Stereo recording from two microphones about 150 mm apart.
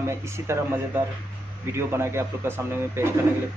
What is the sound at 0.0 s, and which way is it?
A man's voice, 15° right (ahead or behind).